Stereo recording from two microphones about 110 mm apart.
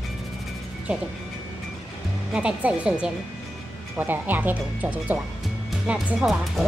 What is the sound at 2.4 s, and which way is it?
Speech, 10° right (ahead or behind).